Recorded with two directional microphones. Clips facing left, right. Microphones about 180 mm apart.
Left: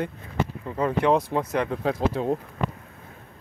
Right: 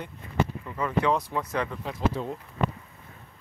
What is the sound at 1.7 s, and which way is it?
Speech, 80° left.